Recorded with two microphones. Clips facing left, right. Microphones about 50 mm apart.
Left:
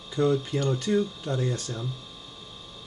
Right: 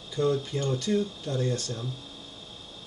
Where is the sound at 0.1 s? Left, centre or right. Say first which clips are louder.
Left 2 dB; left.